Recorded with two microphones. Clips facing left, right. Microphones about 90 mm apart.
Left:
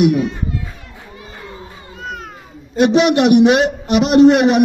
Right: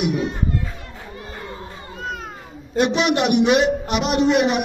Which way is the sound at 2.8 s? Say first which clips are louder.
Left 6 dB; 65° left (ahead or behind).